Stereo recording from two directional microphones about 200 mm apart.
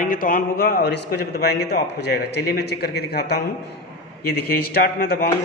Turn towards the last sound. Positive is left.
turn(degrees=50)  # may be behind; listen again after turning